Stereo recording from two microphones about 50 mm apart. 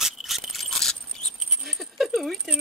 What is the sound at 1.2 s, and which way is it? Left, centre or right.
Dog, centre.